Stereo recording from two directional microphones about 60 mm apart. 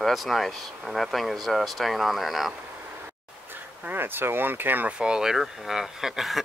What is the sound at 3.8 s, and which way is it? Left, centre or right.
Speech, right.